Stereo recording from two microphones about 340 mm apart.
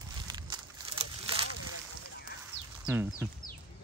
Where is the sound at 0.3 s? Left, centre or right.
Centre.